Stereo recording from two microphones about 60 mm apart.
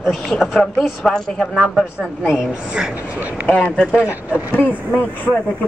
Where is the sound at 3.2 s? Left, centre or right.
Right.